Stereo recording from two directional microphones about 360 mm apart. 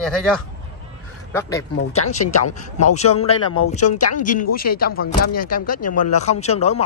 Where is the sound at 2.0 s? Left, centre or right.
Centre.